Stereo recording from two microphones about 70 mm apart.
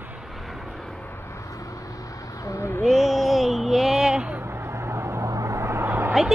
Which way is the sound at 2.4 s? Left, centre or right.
Left.